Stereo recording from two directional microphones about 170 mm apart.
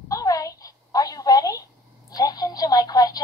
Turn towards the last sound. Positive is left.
turn(degrees=20)  # may be behind; listen again after turning